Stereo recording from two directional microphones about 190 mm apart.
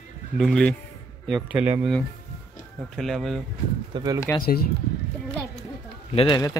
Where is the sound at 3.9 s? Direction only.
20° right (ahead or behind).